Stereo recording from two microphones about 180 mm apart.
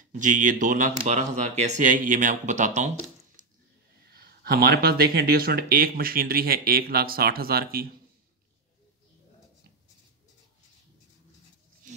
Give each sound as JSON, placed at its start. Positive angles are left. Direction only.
{"t": 0.2, "sound": "speech", "side_deg": -45}
{"t": 4.0, "sound": "speech", "side_deg": -60}